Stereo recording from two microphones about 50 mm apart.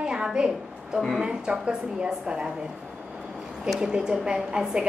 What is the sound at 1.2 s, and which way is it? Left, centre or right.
A woman's voice, centre.